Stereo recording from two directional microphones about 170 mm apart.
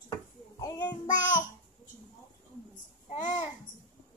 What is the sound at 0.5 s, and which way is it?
Child singing, 20° left (ahead or behind).